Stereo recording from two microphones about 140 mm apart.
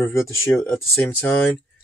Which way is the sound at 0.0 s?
20° left (ahead or behind).